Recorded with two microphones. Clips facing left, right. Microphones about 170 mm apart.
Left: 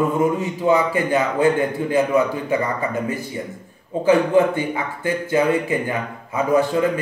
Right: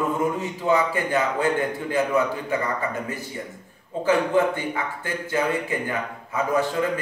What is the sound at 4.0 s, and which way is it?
Speech, 15° left (ahead or behind).